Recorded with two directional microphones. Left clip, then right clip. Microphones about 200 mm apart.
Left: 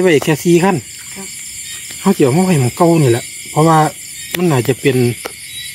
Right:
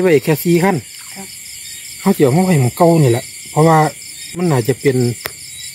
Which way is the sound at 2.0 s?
15° right (ahead or behind).